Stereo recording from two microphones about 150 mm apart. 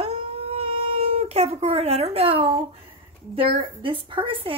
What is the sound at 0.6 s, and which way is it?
Cat, 40° right (ahead or behind).